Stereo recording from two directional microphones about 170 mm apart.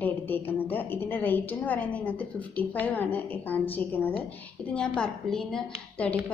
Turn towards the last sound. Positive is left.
turn(degrees=5)  # may be behind; listen again after turning